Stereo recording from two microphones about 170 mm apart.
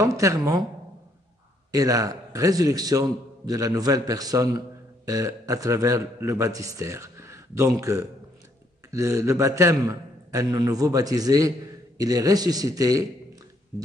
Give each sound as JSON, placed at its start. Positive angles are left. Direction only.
{"t": 0.0, "sound": "speech", "side_deg": -20}
{"t": 1.7, "sound": "a man's voice", "side_deg": -20}